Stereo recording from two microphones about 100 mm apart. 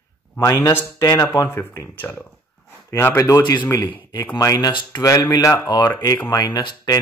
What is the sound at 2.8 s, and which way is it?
Speech, 30° left (ahead or behind).